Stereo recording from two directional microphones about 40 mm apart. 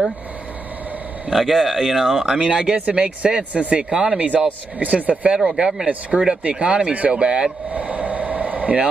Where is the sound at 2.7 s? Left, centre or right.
Right.